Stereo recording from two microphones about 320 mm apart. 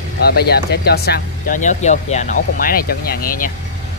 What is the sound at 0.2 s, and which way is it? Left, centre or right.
Speech, left.